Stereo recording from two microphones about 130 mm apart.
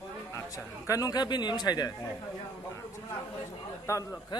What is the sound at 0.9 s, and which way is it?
Speech, 30° left (ahead or behind).